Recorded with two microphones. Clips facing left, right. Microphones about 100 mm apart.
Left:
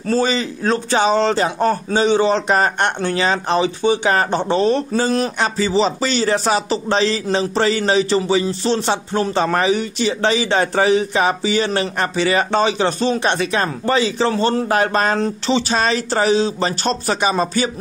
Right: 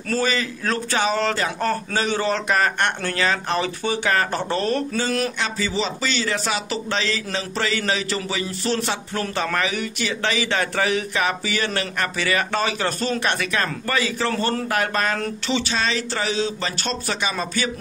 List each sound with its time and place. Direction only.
0.1 s speech: 25° left (ahead or behind)
4.9 s speech: 30° left (ahead or behind)